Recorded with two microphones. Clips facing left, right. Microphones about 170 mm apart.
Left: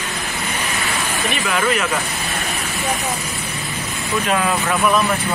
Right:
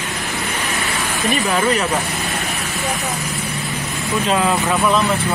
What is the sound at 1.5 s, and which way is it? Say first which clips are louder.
Speech: even; 30° right (ahead or behind).